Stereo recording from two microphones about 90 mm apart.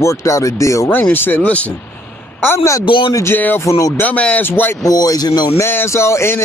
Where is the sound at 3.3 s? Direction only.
20° left (ahead or behind).